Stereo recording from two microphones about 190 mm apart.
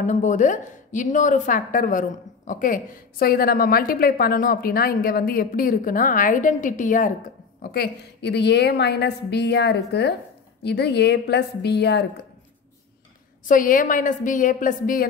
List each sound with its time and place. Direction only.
0.0 s a woman's voice: 40° left (ahead or behind)
7.6 s a woman's voice: 55° left (ahead or behind)
13.5 s a woman's voice: 45° left (ahead or behind)